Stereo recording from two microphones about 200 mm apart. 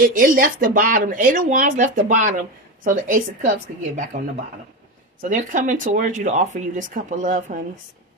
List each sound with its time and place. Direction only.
0.0 s speech: 45° right (ahead or behind)
5.2 s speech: 40° right (ahead or behind)